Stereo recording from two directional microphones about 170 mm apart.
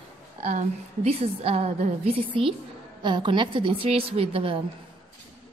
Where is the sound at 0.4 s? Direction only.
45° right (ahead or behind).